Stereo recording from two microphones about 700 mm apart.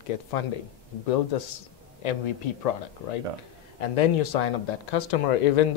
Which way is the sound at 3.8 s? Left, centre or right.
Left.